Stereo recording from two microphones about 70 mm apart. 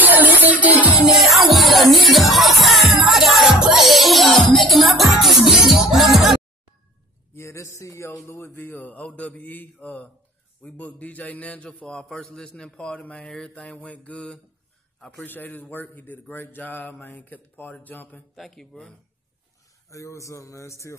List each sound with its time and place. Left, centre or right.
0.0 s music: right
1.1 s music: centre
7.3 s a man's voice: left; by 13.5 s centre
13.6 s a man's voice: centre
15.1 s mantra: left
18.3 s speech: centre
19.9 s speech: left